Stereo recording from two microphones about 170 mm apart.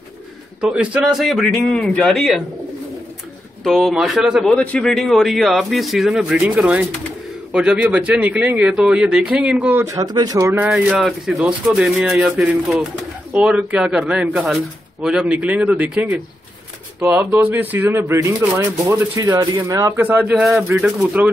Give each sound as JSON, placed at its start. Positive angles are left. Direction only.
{"t": 0.6, "sound": "a man's voice", "side_deg": -5}
{"t": 3.6, "sound": "a man's voice", "side_deg": 0}
{"t": 10.7, "sound": "a man's voice", "side_deg": 0}